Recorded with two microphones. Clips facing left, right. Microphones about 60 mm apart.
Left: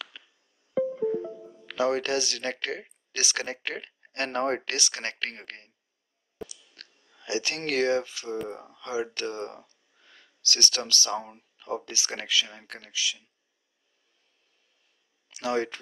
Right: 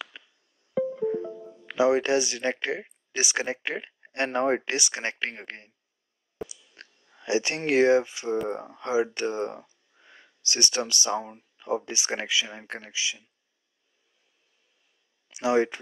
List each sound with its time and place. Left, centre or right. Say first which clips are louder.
0.2 s music: right 2 dB; centre
1.7 s speech: right 4 dB; centre
6.3 s a sound: right 3 dB; right
6.7 s speech: right 3 dB; right
8.5 s speech: right 6 dB; right
9.7 s a sound: right 3 dB; centre
11.5 s speech: right 4 dB; centre
15.3 s speech: right 5 dB; centre